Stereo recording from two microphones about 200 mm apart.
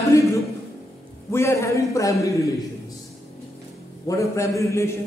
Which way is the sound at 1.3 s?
15° left (ahead or behind).